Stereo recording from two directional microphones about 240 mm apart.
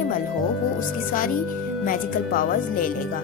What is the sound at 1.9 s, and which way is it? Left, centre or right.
Speech, left.